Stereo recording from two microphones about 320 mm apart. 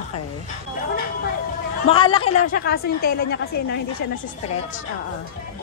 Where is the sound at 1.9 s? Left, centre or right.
Centre.